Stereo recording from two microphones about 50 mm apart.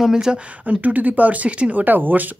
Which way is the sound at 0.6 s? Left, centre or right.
Right.